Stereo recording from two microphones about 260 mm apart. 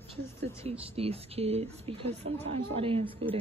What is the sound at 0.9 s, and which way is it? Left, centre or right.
Speech, right.